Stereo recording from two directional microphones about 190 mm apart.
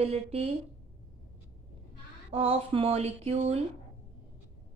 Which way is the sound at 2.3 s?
30° right (ahead or behind).